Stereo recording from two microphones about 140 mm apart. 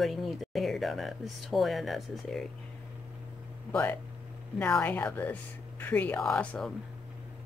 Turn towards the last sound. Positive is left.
turn(degrees=10)  # may be behind; listen again after turning